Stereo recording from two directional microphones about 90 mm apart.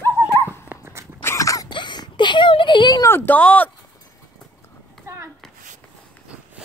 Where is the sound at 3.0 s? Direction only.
25° left (ahead or behind).